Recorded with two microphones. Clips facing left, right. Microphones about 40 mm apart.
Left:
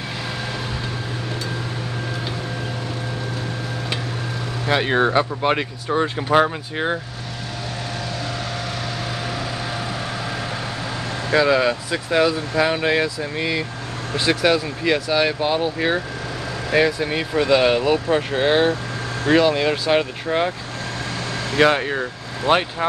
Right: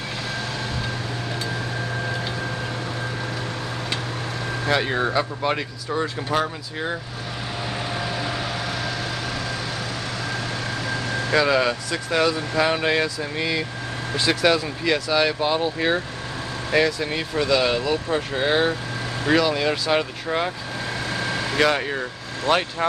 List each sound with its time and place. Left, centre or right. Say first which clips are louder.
4.8 s speech: left 4 dB; left
11.2 s speech: left 3 dB; centre
17.5 s speech: left 5 dB; left
17.9 s speech: left 4 dB; centre
21.5 s speech: left 4 dB; centre